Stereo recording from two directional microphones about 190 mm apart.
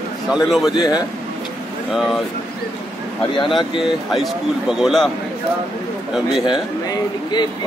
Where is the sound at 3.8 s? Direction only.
Centre (ahead or behind).